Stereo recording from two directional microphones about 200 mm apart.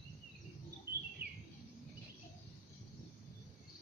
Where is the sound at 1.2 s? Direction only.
50° right (ahead or behind).